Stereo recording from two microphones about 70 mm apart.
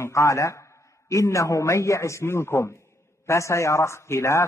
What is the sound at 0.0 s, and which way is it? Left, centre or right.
A man's voice, left.